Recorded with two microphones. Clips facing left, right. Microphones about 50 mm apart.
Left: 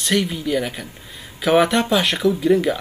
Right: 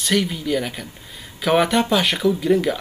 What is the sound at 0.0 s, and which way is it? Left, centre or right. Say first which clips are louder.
Speech: even; centre.